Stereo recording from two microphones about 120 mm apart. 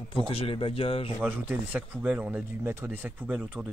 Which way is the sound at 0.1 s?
50° left (ahead or behind).